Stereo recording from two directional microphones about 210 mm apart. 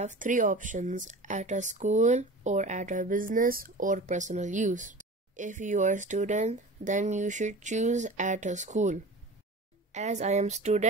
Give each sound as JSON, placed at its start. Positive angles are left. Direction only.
{"t": 0.0, "sound": "speech", "side_deg": -35}